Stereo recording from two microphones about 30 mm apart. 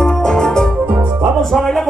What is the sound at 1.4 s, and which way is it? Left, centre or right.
Music, centre.